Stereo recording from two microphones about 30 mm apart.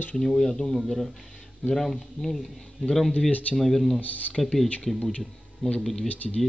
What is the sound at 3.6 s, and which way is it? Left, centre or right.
Speech, centre.